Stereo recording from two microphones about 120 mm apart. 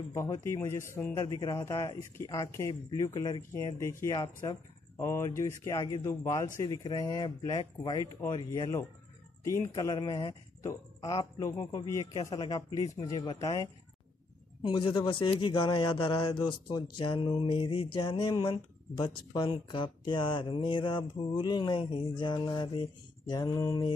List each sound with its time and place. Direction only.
0.1 s a man's voice: 25° left (ahead or behind)
1.1 s a man's voice: 35° left (ahead or behind)
14.6 s a man's voice: 40° left (ahead or behind)